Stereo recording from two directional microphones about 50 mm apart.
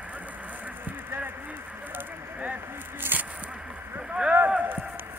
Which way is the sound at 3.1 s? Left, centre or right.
Right.